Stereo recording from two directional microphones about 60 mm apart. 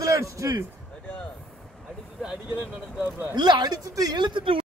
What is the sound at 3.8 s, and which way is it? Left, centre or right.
Speech, right.